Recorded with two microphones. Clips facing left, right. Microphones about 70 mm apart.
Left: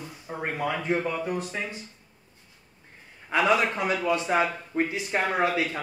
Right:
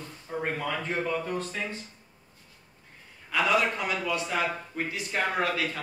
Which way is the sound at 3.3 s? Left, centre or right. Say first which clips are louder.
Left 2 dB; left.